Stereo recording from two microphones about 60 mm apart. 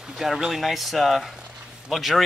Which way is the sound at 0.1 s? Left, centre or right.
Centre.